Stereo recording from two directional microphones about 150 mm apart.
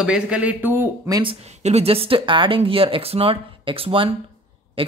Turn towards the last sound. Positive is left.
turn(degrees=-35)  # may be behind; listen again after turning